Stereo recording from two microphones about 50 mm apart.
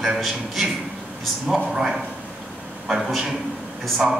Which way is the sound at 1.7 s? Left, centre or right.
Centre.